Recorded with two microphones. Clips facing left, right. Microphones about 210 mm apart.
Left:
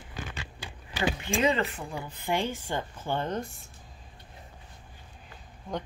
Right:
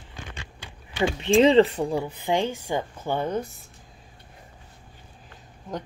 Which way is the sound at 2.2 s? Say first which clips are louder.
Right 2 dB; 15° right (ahead or behind).